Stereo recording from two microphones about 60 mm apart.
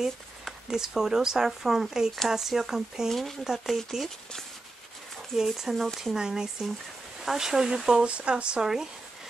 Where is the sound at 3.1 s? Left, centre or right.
Centre.